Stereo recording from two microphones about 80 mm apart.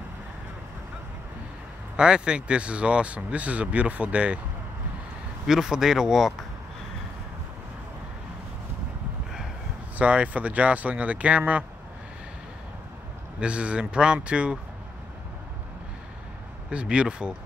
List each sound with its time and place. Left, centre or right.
2.0 s speech: centre
5.5 s speech: centre
9.9 s speech: centre
13.4 s speech: centre
16.7 s speech: centre